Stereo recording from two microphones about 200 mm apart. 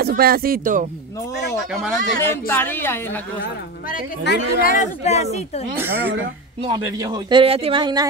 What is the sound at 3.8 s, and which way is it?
Speech, 50° left (ahead or behind).